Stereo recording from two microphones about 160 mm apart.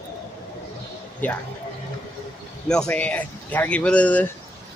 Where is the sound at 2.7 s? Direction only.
5° left (ahead or behind).